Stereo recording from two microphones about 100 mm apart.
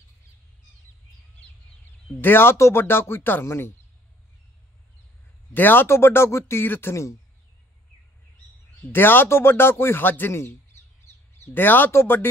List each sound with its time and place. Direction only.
2.2 s speech: 25° left (ahead or behind)
5.5 s speech: 20° left (ahead or behind)
8.9 s speech: 20° left (ahead or behind)